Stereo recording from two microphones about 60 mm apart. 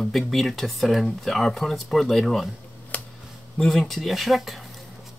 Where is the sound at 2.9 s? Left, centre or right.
Left.